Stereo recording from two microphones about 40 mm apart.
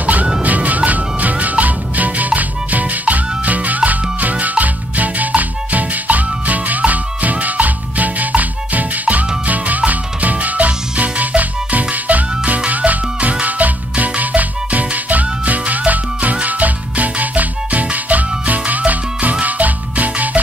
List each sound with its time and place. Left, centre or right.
0.0 s music: right